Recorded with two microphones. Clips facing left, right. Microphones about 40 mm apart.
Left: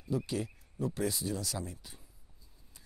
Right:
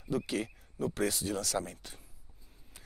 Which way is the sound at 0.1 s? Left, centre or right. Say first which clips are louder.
Right 1 dB; right.